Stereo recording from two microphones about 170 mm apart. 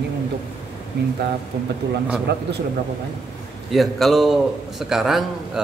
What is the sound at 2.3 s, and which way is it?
Speech, 75° right (ahead or behind).